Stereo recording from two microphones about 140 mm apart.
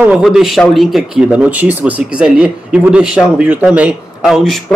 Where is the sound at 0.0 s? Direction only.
5° right (ahead or behind).